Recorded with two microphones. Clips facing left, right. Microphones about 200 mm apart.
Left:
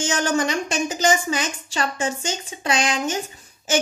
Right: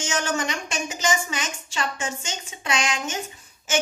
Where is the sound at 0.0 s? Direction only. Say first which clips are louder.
Left 5 dB; 35° left (ahead or behind).